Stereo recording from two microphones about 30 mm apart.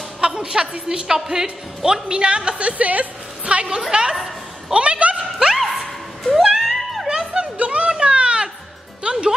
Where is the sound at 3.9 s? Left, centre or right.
Right.